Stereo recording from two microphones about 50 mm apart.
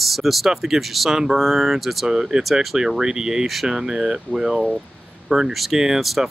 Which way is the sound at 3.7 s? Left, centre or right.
Centre.